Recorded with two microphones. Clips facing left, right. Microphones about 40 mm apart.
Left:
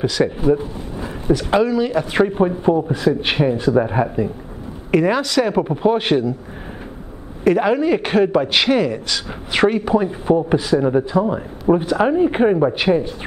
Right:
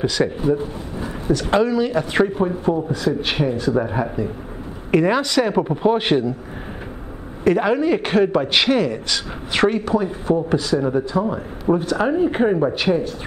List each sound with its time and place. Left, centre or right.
0.2 s a man's voice: centre
2.2 s a man's voice: left
4.9 s a man's voice: centre
7.4 s a man's voice: centre
9.8 s speech: centre